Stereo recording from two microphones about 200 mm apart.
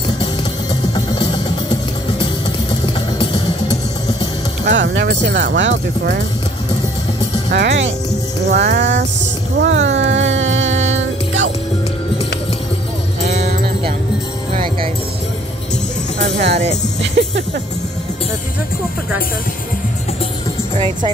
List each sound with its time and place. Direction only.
0.9 s music: 20° left (ahead or behind)
4.6 s speech: 65° right (ahead or behind)
7.5 s speech: 60° right (ahead or behind)
9.6 s music: 70° right (ahead or behind)
16.3 s speech: 55° right (ahead or behind)